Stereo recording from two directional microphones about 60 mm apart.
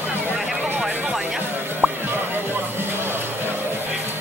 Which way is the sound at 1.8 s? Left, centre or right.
Right.